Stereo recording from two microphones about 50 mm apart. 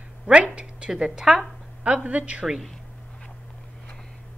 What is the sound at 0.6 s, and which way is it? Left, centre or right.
Speech, centre.